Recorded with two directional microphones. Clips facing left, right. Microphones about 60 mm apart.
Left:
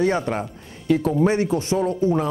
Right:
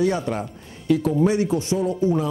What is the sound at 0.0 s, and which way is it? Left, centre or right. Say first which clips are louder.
Speech: left 1 dB; left.